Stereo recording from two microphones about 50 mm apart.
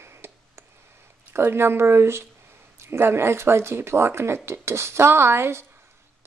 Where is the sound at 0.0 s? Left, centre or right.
Right.